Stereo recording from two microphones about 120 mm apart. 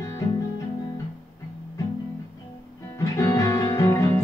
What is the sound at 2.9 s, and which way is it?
Music, 25° left (ahead or behind).